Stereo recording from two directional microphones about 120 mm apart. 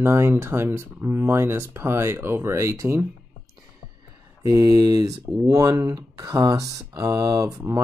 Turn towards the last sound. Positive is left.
turn(degrees=-30)  # may be behind; listen again after turning